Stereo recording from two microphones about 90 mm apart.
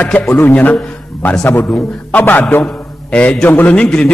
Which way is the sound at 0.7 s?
25° left (ahead or behind).